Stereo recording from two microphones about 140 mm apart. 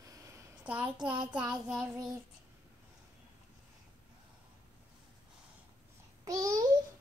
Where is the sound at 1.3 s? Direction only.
5° right (ahead or behind).